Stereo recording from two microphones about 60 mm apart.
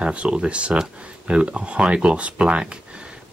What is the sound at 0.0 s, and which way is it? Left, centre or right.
Speech, centre.